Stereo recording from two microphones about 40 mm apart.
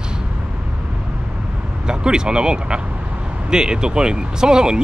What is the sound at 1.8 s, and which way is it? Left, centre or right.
Speech, right.